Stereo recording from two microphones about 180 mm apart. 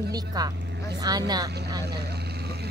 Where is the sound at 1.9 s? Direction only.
65° right (ahead or behind).